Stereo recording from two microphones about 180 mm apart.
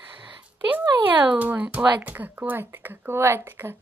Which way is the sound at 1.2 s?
10° right (ahead or behind).